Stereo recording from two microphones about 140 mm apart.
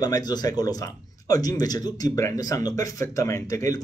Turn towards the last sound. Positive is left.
turn(degrees=25)  # may be behind; listen again after turning